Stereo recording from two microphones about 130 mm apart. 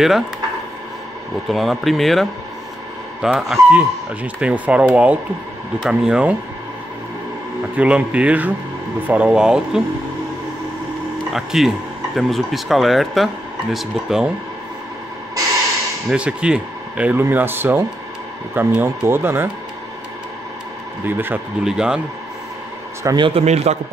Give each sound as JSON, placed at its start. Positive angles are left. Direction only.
{"t": 1.5, "sound": "speech", "side_deg": 0}
{"t": 7.7, "sound": "speech", "side_deg": -10}
{"t": 11.3, "sound": "speech", "side_deg": 0}
{"t": 16.1, "sound": "speech", "side_deg": -5}
{"t": 21.0, "sound": "speech", "side_deg": -15}
{"t": 23.0, "sound": "a man's voice", "side_deg": -35}
{"t": 23.4, "sound": "a man's voice", "side_deg": -55}